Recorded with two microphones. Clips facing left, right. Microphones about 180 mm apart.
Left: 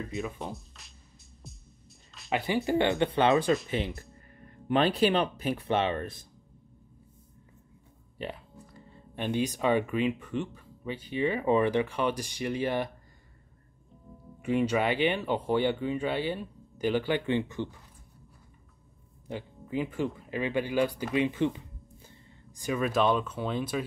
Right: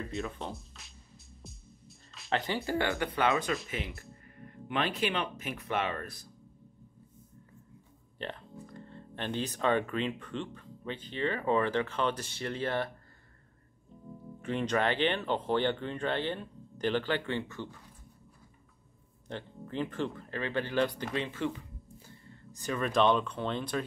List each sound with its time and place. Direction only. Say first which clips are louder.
0.1 s speech: left 2 dB; 5° left (ahead or behind)
1.4 s music: left 1 dB; centre (ahead or behind)
2.3 s speech: left 4 dB; 15° left (ahead or behind); by 3.5 s 30° left (ahead or behind)
4.6 s speech: left 7 dB; 35° left (ahead or behind)
8.2 s speech: left 2 dB; 10° left (ahead or behind)
14.4 s speech: left 4 dB; 10° left (ahead or behind)
19.2 s speech: left 2 dB; 10° left (ahead or behind)